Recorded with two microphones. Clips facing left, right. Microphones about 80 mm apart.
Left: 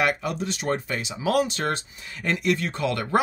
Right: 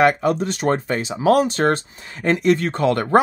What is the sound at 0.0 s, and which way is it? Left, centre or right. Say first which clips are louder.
Speech: right 8 dB; right.